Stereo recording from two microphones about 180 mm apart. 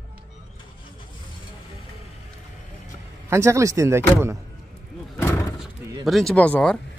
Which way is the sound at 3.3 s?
15° right (ahead or behind).